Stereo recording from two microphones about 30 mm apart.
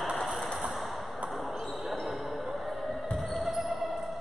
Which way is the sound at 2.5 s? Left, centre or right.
Centre.